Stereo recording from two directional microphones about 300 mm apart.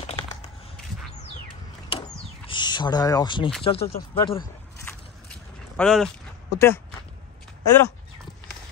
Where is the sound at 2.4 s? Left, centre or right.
Centre.